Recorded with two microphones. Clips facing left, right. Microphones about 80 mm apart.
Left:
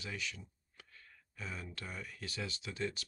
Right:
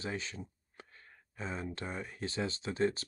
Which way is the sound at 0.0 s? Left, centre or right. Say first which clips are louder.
Right 5 dB; right.